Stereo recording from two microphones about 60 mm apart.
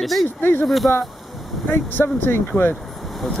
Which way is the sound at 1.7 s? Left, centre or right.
Left.